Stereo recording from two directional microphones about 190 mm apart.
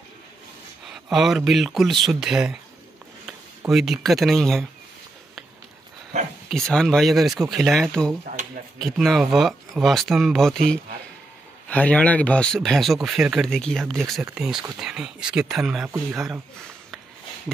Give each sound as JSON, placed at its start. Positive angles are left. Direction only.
{"t": 0.8, "sound": "speech", "side_deg": 0}
{"t": 6.5, "sound": "speech", "side_deg": 0}
{"t": 11.7, "sound": "speech", "side_deg": 5}